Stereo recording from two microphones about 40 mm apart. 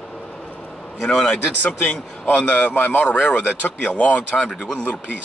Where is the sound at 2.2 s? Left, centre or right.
Left.